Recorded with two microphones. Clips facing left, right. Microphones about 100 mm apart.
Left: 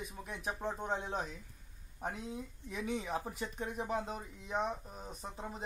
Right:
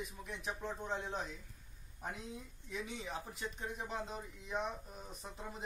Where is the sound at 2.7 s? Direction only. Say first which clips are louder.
Left 6 dB; 45° left (ahead or behind).